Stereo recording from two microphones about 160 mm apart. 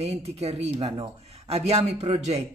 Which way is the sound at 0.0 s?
40° right (ahead or behind).